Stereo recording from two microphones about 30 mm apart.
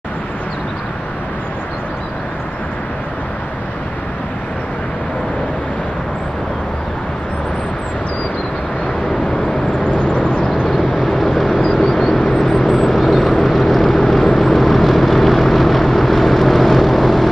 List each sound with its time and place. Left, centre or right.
10.9 s vehicle: centre
11.6 s vehicle: left; by 17.3 s centre